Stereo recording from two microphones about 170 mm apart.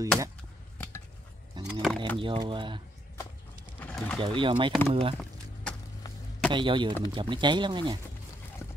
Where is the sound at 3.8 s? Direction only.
5° left (ahead or behind).